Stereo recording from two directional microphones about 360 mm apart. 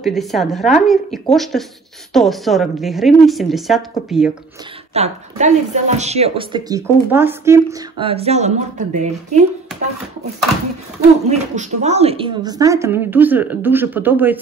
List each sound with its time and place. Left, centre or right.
0.0 s a woman's voice: centre
4.9 s speech: centre
11.2 s speech: centre